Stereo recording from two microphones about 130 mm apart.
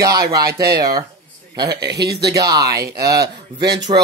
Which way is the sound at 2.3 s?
30° right (ahead or behind).